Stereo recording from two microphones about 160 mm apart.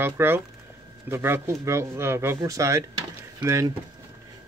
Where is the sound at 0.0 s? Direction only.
15° right (ahead or behind).